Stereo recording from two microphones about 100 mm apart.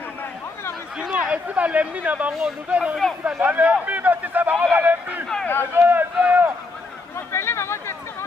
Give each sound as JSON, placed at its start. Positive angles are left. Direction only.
{"t": 0.9, "sound": "speech", "side_deg": -10}
{"t": 7.3, "sound": "chatter", "side_deg": 25}